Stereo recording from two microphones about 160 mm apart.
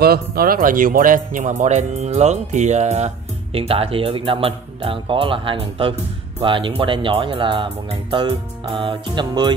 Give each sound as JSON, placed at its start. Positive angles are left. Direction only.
{"t": 0.0, "sound": "speech", "side_deg": -75}